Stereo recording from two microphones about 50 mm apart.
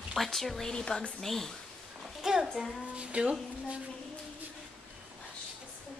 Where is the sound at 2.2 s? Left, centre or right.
Centre.